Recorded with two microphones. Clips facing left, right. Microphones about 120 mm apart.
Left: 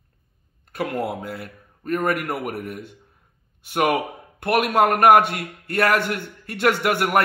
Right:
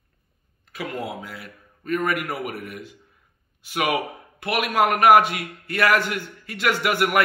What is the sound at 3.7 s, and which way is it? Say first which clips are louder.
A man's voice: left 3 dB; 50° left (ahead or behind).